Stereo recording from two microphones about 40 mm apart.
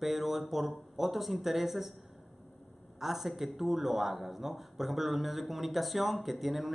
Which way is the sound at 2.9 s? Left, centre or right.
Centre.